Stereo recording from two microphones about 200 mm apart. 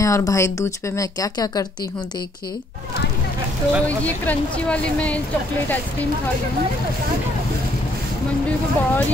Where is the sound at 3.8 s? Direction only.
10° left (ahead or behind).